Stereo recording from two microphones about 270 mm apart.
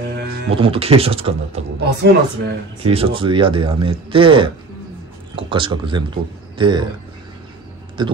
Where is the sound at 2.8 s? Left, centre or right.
Right.